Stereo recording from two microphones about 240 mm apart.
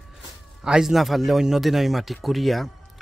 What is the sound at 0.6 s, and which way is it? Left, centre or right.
Speech, centre.